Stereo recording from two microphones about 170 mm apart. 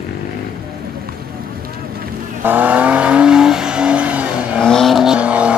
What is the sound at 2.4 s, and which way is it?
Vehicle, 10° right (ahead or behind).